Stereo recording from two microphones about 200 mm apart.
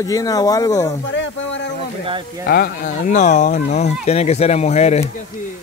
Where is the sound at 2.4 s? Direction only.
50° left (ahead or behind); by 5.0 s 35° left (ahead or behind).